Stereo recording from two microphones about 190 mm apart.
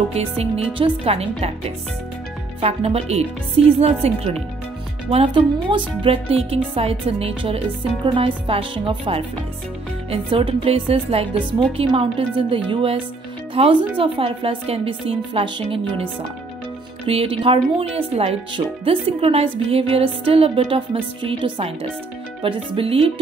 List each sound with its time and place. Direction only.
0.1 s speech: 35° right (ahead or behind)
2.6 s speech: 30° right (ahead or behind)